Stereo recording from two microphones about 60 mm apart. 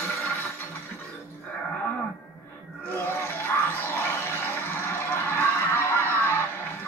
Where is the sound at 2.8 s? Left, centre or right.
Left.